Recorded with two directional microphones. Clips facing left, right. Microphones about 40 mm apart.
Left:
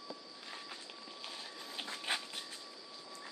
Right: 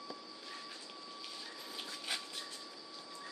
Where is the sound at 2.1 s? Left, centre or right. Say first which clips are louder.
Left 4 dB; left.